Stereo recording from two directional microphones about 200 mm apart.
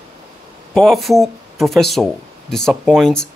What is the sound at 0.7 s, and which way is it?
Speech, centre (ahead or behind).